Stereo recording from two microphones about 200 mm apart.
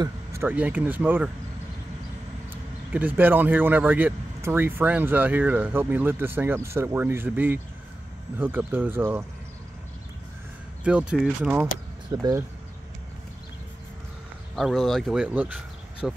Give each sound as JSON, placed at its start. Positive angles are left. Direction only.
{"t": 0.0, "sound": "speech", "side_deg": -15}
{"t": 2.9, "sound": "speech", "side_deg": -10}
{"t": 10.8, "sound": "speech", "side_deg": -5}
{"t": 12.1, "sound": "speech", "side_deg": -15}
{"t": 14.5, "sound": "speech", "side_deg": 0}